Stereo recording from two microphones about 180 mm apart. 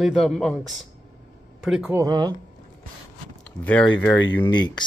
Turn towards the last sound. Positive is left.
turn(degrees=25)  # may be behind; listen again after turning